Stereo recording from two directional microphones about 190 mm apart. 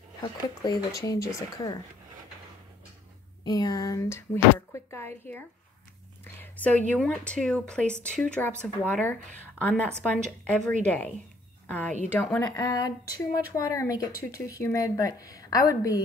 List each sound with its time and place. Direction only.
0.6 s speech: 20° left (ahead or behind)
3.4 s speech: 20° left (ahead or behind)
6.4 s a sound: 10° left (ahead or behind)
6.9 s speech: 5° left (ahead or behind)
11.6 s a sound: 10° left (ahead or behind)
12.1 s speech: 10° left (ahead or behind)